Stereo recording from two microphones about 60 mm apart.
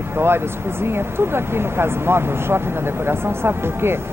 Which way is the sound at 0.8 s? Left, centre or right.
Right.